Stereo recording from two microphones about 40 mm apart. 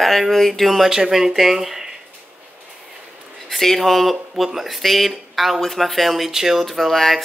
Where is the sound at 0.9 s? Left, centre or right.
Centre.